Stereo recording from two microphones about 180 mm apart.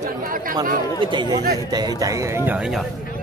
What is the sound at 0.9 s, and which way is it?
Speech, 25° right (ahead or behind).